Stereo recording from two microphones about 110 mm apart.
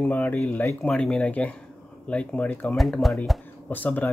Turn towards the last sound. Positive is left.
turn(degrees=15)  # may be behind; listen again after turning